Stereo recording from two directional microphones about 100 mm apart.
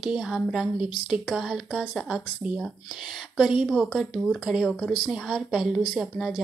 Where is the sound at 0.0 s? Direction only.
5° right (ahead or behind).